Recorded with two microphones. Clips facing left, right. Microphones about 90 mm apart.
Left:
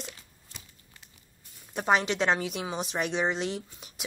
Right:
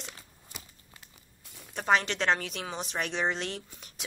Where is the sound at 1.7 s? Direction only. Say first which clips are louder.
Left 1 dB; 10° left (ahead or behind).